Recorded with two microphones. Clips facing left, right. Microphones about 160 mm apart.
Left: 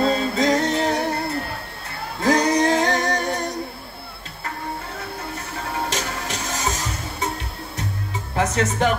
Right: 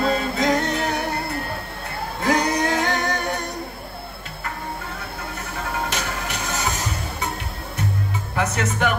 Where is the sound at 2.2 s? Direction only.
35° left (ahead or behind).